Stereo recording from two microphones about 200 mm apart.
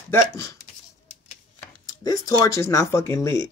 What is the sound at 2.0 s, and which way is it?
Speech, 15° left (ahead or behind).